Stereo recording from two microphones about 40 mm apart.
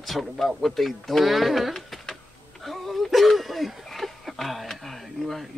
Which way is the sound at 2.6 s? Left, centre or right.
Centre.